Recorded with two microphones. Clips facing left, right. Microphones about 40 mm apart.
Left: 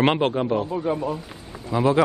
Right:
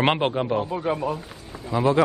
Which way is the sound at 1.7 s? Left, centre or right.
Centre.